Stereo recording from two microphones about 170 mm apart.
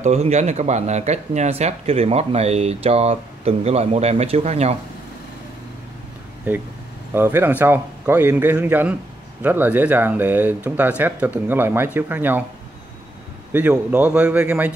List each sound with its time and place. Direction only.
0.0 s speech: 40° right (ahead or behind)
7.2 s speech: 15° right (ahead or behind)
13.5 s speech: 10° right (ahead or behind)